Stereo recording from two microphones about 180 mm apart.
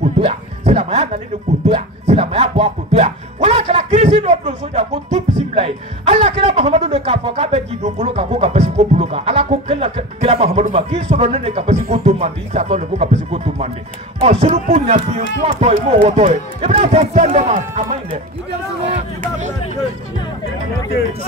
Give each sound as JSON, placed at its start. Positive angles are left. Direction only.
{"t": 0.0, "sound": "music", "side_deg": -35}
{"t": 14.2, "sound": "speech", "side_deg": -35}
{"t": 18.9, "sound": "a sound", "side_deg": -45}